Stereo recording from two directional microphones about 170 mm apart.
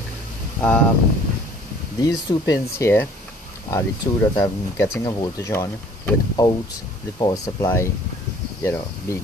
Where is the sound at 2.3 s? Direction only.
20° left (ahead or behind).